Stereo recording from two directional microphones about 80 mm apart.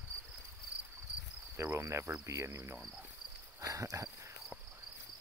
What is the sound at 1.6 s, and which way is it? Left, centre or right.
Cricket, right.